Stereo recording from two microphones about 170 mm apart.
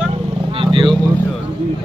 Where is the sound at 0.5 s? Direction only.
30° right (ahead or behind).